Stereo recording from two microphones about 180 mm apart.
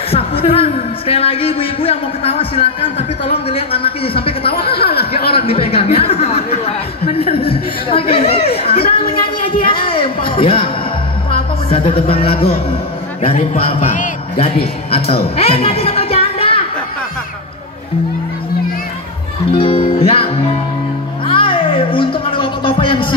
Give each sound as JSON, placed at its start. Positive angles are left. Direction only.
{"t": 0.1, "sound": "a man's voice", "side_deg": 30}
{"t": 4.8, "sound": "a sound", "side_deg": 60}
{"t": 5.3, "sound": "a man's voice", "side_deg": 30}
{"t": 20.0, "sound": "music", "side_deg": 30}
{"t": 21.3, "sound": "music", "side_deg": 30}